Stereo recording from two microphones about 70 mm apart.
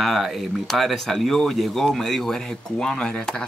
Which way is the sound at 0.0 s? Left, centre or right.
Centre.